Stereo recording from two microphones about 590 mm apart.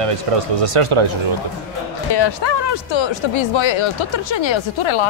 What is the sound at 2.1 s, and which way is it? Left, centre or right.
Speech, left.